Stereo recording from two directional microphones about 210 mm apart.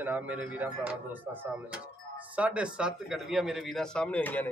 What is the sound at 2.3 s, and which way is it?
A man's voice, 5° right (ahead or behind).